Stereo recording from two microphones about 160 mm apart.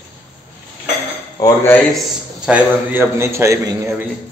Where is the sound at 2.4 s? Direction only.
10° right (ahead or behind).